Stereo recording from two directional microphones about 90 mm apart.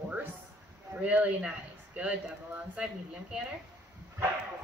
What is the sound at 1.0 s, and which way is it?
Speech, 15° right (ahead or behind).